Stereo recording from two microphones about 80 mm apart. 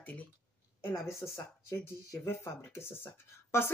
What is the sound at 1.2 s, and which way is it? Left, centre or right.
A woman's voice, left.